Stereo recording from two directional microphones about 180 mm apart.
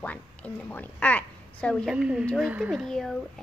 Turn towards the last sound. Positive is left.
turn(degrees=0)  # may be behind; listen again after turning